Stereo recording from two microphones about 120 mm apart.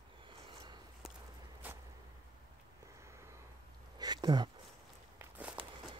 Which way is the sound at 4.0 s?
35° right (ahead or behind).